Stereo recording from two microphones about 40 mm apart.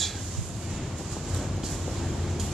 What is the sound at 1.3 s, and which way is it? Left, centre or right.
Train, centre.